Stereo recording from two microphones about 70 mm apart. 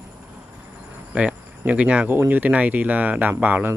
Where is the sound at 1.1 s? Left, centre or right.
Right.